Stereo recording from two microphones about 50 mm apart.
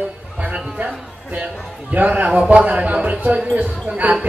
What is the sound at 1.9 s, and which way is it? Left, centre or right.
A man's voice, right.